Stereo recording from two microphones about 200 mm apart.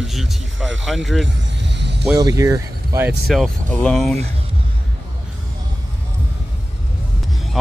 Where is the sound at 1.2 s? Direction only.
60° right (ahead or behind).